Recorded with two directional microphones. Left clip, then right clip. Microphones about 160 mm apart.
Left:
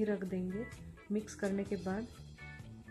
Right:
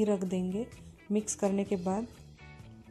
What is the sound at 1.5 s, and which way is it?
Speech, 30° right (ahead or behind).